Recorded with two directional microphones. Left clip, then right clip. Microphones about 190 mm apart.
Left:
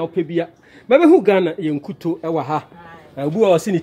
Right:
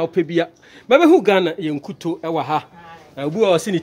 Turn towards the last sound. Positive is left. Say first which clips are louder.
# left 1 dB
turn(degrees=10)  # may be behind; listen again after turning